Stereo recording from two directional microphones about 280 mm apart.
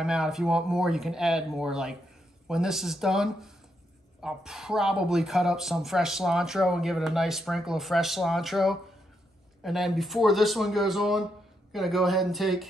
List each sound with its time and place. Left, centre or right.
0.0 s speech: centre